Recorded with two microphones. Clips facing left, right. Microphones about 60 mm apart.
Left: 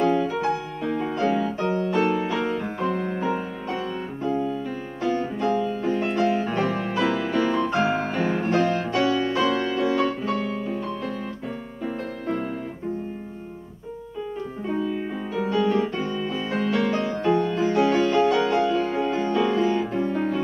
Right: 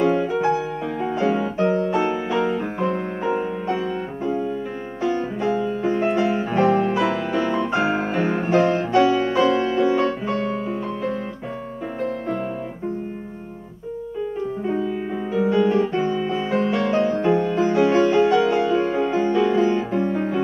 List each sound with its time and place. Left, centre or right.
0.0 s music: centre
12.0 s music: centre
14.7 s music: centre